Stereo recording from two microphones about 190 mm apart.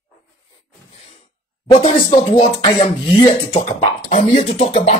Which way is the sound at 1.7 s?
25° left (ahead or behind).